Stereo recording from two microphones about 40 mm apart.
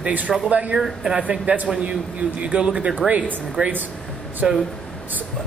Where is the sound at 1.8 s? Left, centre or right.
Right.